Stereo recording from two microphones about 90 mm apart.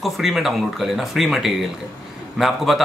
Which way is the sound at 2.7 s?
Centre (ahead or behind).